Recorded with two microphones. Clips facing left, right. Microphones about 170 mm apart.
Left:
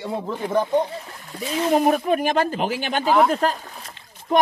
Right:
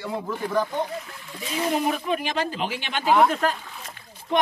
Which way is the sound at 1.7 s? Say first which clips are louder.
Left 7 dB; 45° left (ahead or behind).